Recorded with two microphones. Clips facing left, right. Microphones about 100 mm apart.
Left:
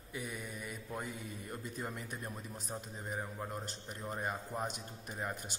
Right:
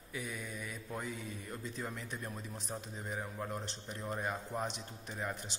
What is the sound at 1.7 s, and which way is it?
Speech, 10° left (ahead or behind).